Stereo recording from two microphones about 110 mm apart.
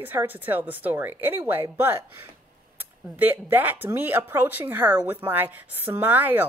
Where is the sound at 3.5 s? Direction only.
15° right (ahead or behind).